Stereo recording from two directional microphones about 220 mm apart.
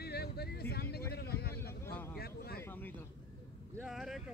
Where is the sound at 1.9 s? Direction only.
10° left (ahead or behind).